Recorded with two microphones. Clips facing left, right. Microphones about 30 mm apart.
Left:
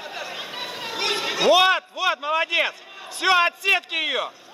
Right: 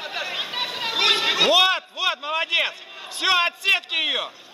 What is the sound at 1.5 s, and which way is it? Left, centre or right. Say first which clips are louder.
A man's voice: left 6 dB; centre.